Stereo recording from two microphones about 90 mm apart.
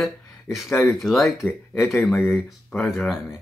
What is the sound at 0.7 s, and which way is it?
Speech, 30° left (ahead or behind).